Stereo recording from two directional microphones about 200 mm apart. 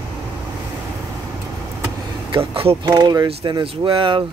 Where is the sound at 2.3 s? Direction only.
25° right (ahead or behind).